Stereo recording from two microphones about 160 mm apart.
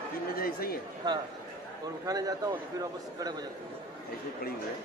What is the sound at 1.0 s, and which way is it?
A man's voice, 25° right (ahead or behind).